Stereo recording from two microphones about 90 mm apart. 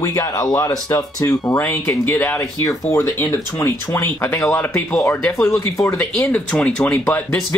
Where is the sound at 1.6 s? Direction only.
25° left (ahead or behind).